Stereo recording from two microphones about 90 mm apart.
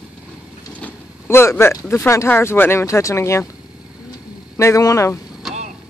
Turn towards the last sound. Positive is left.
turn(degrees=0)  # may be behind; listen again after turning